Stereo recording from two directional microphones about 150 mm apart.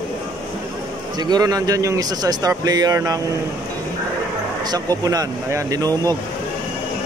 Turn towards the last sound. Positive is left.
turn(degrees=-25)  # may be behind; listen again after turning